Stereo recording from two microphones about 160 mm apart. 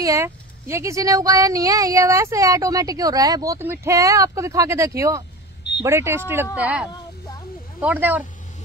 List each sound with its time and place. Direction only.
0.0 s speech: 20° right (ahead or behind)